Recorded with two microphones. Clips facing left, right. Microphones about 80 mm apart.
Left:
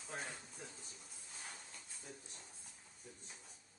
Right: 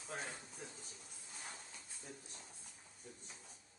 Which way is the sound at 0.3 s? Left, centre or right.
Centre.